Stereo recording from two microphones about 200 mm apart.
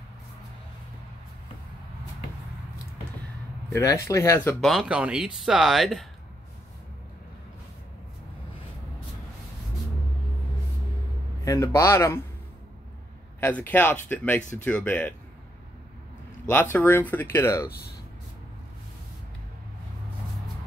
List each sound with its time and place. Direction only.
3.7 s speech: 15° left (ahead or behind)
4.6 s speech: centre (ahead or behind)
11.4 s speech: 15° left (ahead or behind)
13.4 s speech: 10° left (ahead or behind)
16.4 s speech: 10° left (ahead or behind)
17.6 s speech: 50° left (ahead or behind)